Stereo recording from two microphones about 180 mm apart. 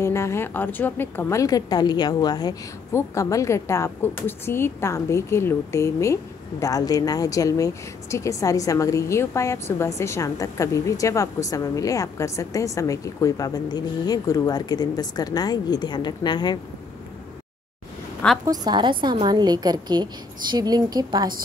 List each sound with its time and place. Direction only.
0.0 s a woman's voice: 15° left (ahead or behind)
18.4 s a woman's voice: 20° right (ahead or behind)